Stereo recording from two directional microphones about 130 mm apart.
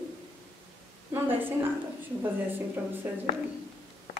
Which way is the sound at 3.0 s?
20° right (ahead or behind).